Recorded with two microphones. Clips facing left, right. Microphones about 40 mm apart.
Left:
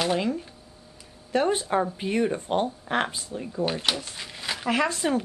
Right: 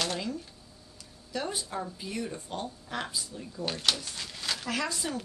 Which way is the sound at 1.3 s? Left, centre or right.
Left.